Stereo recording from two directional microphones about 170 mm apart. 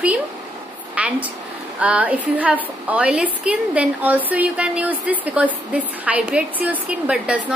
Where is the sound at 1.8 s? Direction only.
10° right (ahead or behind).